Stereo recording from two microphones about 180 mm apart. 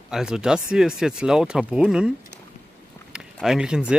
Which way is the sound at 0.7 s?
5° right (ahead or behind).